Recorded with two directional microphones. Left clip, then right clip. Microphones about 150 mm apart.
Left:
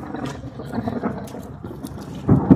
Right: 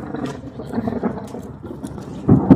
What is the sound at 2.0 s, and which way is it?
Thunder, 40° right (ahead or behind).